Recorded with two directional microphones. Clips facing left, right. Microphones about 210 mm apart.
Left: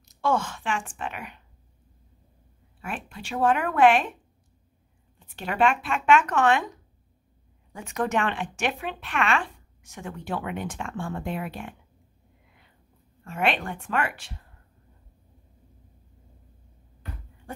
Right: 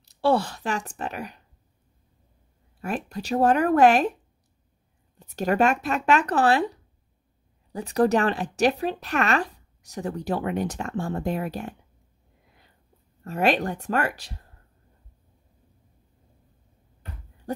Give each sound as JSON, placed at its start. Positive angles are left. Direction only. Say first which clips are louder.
{"t": 0.0, "sound": "speech", "louder": "right 4 dB", "side_deg": -35}
{"t": 2.8, "sound": "speech", "louder": "right 6 dB", "side_deg": -40}
{"t": 5.2, "sound": "speech", "louder": "right 3 dB", "side_deg": -40}
{"t": 13.2, "sound": "speech", "louder": "right 4 dB", "side_deg": -40}